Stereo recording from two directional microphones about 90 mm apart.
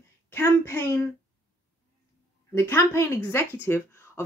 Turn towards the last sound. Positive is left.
turn(degrees=25)  # may be behind; listen again after turning